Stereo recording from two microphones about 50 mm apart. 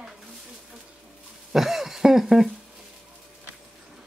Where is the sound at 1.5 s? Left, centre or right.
Centre.